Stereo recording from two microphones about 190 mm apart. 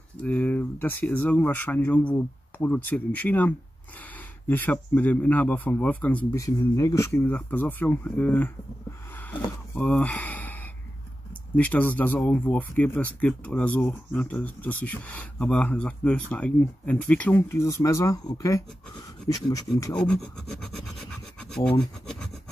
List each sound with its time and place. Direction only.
0.2 s speech: 10° left (ahead or behind)
19.9 s filing: 5° left (ahead or behind)
21.5 s speech: 5° left (ahead or behind)